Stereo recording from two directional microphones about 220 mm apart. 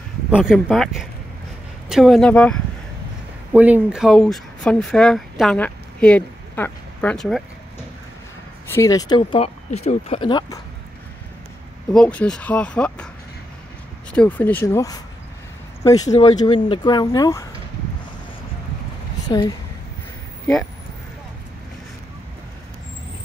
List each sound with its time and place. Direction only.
0.3 s speech: 5° right (ahead or behind)
3.5 s speech: 5° right (ahead or behind)
8.7 s speech: 15° left (ahead or behind)
11.9 s speech: 5° left (ahead or behind)
14.1 s speech: 5° left (ahead or behind)
19.2 s speech: 20° left (ahead or behind)